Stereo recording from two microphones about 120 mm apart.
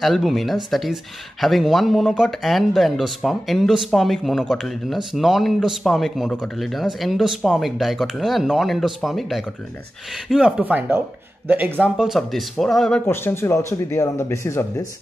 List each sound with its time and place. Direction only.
0.0 s speech: centre (ahead or behind)
10.6 s speech: 15° right (ahead or behind); by 13.0 s 5° left (ahead or behind)
13.0 s speech: 20° left (ahead or behind)